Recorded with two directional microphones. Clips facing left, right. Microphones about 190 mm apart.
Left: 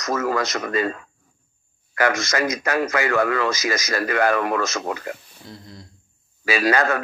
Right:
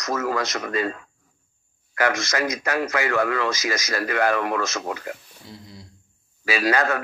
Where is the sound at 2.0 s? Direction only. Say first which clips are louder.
Left 2 dB; 45° left (ahead or behind).